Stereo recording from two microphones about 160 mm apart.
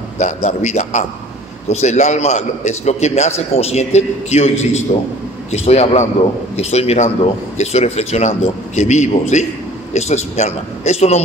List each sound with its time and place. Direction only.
0.2 s a man's voice: 45° left (ahead or behind)